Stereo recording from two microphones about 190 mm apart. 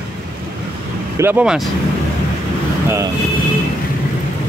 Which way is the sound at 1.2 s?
10° right (ahead or behind).